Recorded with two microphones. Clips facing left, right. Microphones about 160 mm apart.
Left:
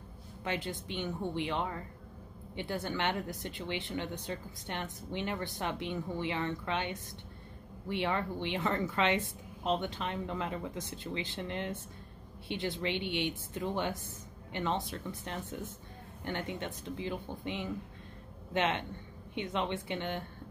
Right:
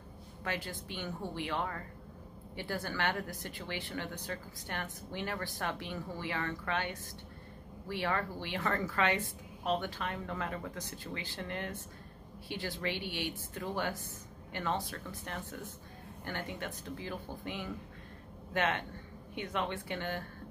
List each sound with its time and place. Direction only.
0.4 s speech: 20° left (ahead or behind)